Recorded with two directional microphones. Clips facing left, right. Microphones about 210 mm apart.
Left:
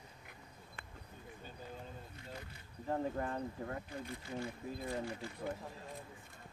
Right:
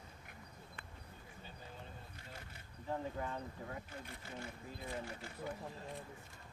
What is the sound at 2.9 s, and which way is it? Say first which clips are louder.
Speech: left 4 dB; 45° left (ahead or behind).